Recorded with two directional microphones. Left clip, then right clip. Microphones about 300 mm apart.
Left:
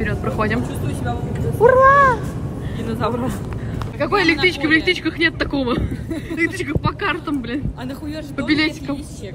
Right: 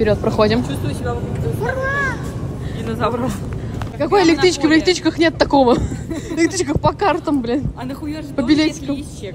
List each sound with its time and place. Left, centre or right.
0.0 s speech: centre
1.6 s vehicle: centre
2.9 s speech: centre
4.0 s speech: centre